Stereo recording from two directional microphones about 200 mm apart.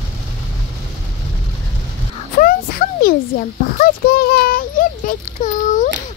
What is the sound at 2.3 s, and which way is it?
A child's voice, 45° left (ahead or behind).